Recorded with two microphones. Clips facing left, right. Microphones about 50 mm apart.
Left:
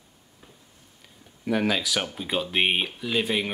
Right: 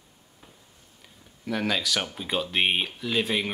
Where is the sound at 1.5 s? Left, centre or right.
Centre.